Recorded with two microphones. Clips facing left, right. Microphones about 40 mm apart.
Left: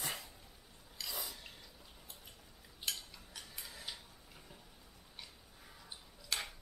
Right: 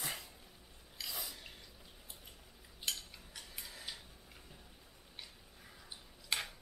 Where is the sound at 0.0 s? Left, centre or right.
Centre.